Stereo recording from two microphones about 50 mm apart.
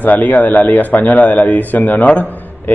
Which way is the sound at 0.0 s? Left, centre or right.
Left.